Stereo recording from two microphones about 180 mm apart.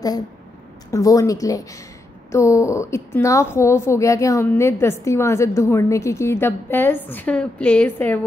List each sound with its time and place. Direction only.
0.9 s a woman's voice: 20° left (ahead or behind)